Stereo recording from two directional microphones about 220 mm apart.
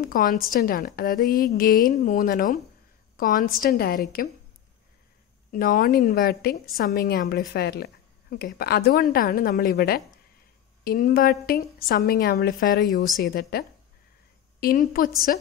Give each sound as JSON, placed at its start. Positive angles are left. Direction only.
{"t": 0.0, "sound": "a woman's voice", "side_deg": 40}
{"t": 5.5, "sound": "a woman's voice", "side_deg": 40}